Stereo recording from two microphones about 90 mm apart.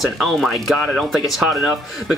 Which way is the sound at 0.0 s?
Centre (ahead or behind).